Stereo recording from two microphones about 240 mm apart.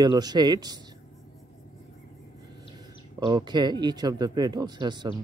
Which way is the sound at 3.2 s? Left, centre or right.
Centre.